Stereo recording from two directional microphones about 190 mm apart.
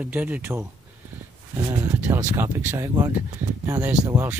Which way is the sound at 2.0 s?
10° right (ahead or behind).